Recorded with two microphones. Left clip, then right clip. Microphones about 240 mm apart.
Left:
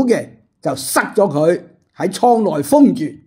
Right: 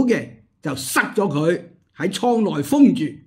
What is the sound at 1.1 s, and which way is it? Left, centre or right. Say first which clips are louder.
Speech: left 6 dB; centre.